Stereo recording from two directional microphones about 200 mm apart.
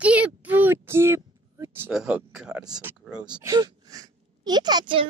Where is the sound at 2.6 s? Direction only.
20° right (ahead or behind).